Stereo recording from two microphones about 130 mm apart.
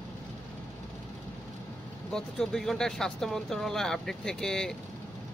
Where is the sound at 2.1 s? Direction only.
5° left (ahead or behind).